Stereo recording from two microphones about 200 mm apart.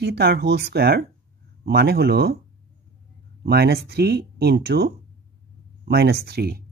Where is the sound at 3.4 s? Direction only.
55° right (ahead or behind).